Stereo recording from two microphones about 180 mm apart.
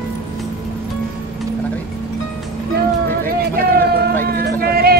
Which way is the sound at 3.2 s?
60° right (ahead or behind).